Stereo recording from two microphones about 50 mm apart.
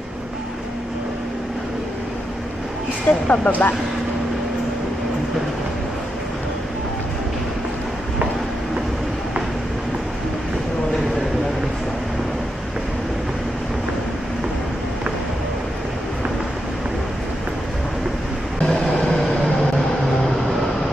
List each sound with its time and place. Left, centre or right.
3.1 s speech: left
18.7 s vehicle: centre